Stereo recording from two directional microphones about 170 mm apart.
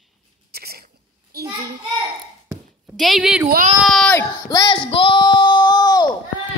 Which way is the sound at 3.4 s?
55° right (ahead or behind).